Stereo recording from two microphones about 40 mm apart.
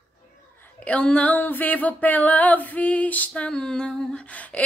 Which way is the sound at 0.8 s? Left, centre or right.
Left.